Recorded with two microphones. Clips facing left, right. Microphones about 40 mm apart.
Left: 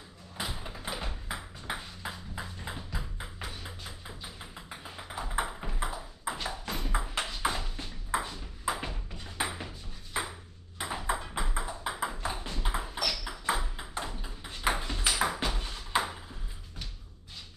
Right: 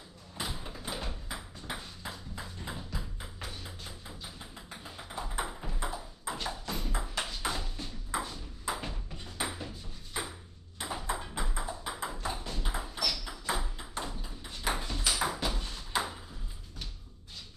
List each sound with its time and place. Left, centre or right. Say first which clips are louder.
0.4 s ping: left 1 dB; centre
4.4 s tap: left 2 dB; centre
5.9 s ping: right 1 dB; centre
6.6 s tap: left 3 dB; left
7.0 s ping: left 7 dB; centre
10.8 s ping: left 3 dB; left
12.5 s a sound: left 3 dB; left
15.5 s ping: left 3 dB; left